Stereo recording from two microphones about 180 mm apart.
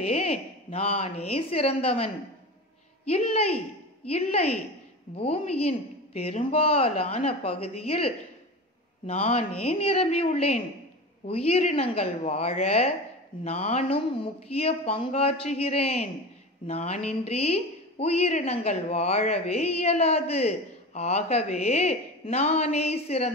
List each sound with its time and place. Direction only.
0.0 s a woman's voice: 35° left (ahead or behind)
3.1 s a woman's voice: 35° left (ahead or behind)